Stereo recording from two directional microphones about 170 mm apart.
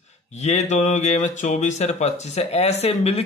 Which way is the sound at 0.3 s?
40° left (ahead or behind).